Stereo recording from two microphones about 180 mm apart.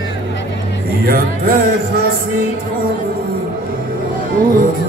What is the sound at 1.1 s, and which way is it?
Speech, 55° right (ahead or behind).